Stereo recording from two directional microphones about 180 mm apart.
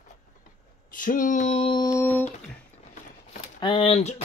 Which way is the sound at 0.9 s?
50° left (ahead or behind).